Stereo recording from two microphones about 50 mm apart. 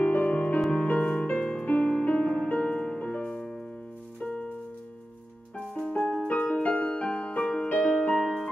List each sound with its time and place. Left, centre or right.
0.0 s music: left; by 4.5 s centre
5.9 s music: left
8.2 s music: centre